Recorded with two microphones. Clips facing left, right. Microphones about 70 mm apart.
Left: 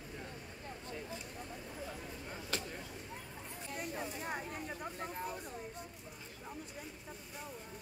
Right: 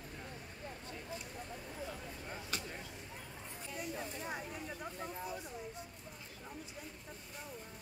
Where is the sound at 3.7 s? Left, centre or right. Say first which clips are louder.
Left 1 dB; left.